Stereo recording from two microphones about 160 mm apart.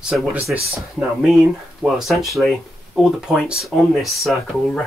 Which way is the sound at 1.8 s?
Centre (ahead or behind).